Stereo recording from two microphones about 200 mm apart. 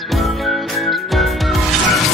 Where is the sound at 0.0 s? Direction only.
Centre (ahead or behind).